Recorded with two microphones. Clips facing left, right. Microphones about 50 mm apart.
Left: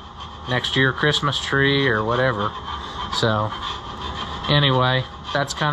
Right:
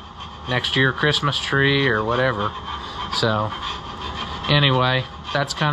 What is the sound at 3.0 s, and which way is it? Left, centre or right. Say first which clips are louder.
Speech: even; right.